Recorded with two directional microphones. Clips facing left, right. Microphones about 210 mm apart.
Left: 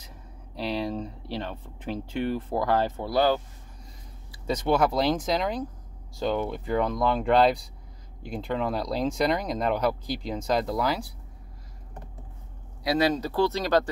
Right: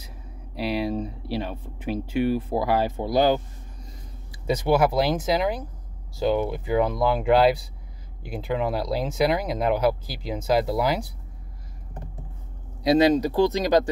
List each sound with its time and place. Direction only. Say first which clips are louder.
0.6 s speech: right 3 dB; 10° right (ahead or behind)
12.8 s speech: right 6 dB; 20° right (ahead or behind)